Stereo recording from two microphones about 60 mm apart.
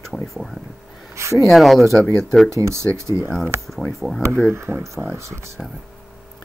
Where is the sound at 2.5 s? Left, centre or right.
Right.